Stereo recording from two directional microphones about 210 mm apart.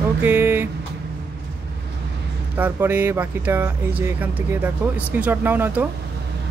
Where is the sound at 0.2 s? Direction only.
10° right (ahead or behind).